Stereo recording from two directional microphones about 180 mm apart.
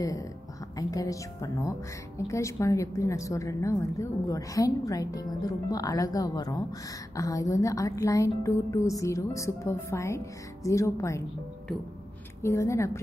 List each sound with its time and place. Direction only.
0.7 s a woman's voice: 20° left (ahead or behind)
12.4 s a woman's voice: 15° left (ahead or behind)